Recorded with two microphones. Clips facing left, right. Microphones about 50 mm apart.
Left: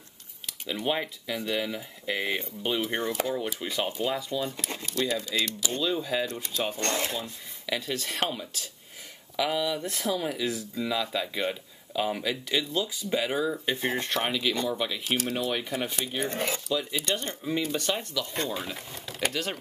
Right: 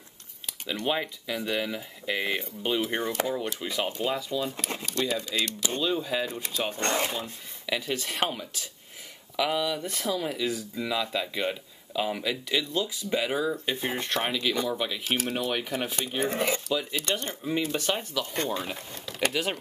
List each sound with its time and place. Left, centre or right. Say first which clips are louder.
0.7 s speech: even; centre
4.5 s speech: right 2 dB; centre
5.6 s speech: right 1 dB; right
5.9 s speech: even; centre
9.4 s speech: even; centre
11.9 s speech: even; centre
18.3 s speech: right 3 dB; centre
19.3 s speech: right 3 dB; centre